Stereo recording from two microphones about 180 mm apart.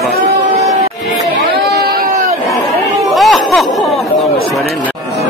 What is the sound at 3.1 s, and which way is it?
Chatter, centre (ahead or behind).